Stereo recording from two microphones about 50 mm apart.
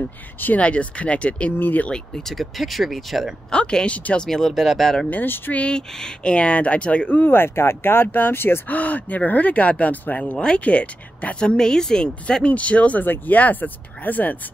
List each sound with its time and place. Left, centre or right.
0.6 s speech: left
1.6 s speech: left
1.9 s a woman's voice: centre
2.3 s speech: centre
3.5 s speech: centre
4.3 s speech: centre
5.1 s speech: left
5.5 s speech: left
7.1 s speech: left
8.6 s speech: left
11.3 s a woman's voice: centre; by 14.3 s left